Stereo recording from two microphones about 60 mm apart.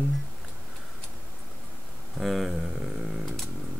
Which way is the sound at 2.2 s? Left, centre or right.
Centre.